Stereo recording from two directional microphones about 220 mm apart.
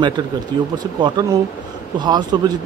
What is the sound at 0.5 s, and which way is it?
Speech, 20° right (ahead or behind).